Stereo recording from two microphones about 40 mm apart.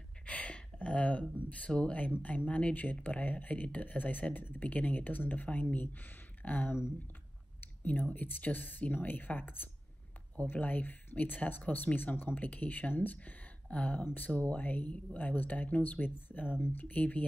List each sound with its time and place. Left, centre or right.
0.2 s a sound: left
1.9 s speech: left
7.8 s speech: left